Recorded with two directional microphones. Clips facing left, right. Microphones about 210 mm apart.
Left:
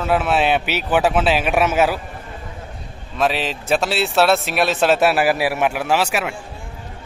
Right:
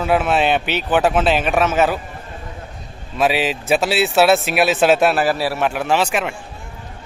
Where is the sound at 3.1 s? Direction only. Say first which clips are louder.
Right 2 dB; 5° right (ahead or behind).